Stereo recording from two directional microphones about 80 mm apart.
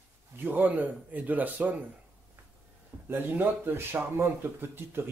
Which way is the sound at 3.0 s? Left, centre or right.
Right.